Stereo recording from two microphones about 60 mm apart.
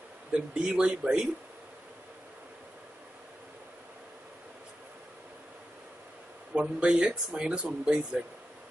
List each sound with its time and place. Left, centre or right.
0.3 s speech: centre
6.5 s speech: centre